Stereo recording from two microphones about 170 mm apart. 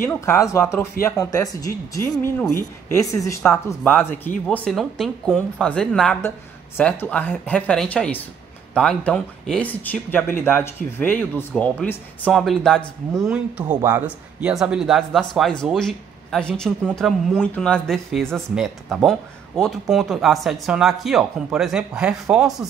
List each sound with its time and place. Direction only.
0.0 s speech: 15° left (ahead or behind); by 22.7 s 5° right (ahead or behind)